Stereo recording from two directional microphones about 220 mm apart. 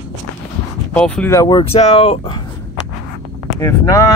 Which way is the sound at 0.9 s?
5° left (ahead or behind).